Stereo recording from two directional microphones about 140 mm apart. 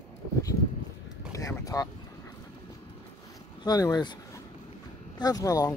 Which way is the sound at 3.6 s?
30° left (ahead or behind).